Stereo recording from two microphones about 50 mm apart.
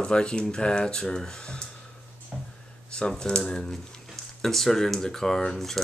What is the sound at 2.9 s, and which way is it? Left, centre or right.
Speech, centre.